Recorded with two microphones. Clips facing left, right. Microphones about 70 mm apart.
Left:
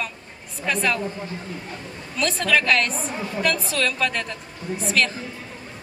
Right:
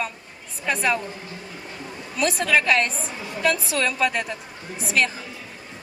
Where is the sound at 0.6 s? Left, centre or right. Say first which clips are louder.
Even; centre.